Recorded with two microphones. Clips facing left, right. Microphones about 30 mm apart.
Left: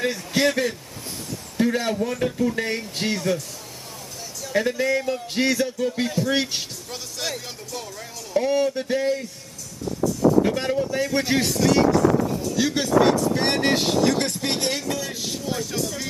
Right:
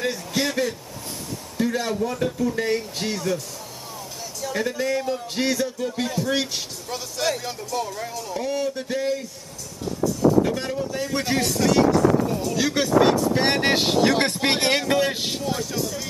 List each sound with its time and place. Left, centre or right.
0.0 s a sound: centre
1.6 s speech: centre
4.6 s speech: centre
6.3 s speech: centre
6.9 s speech: centre
8.4 s speech: centre
10.4 s speech: centre
11.1 s speech: centre
11.5 s speech: centre
14.1 s a man's voice: right
15.7 s speech: centre